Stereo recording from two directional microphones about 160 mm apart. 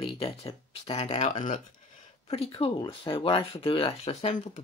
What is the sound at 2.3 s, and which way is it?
Speech, 35° left (ahead or behind).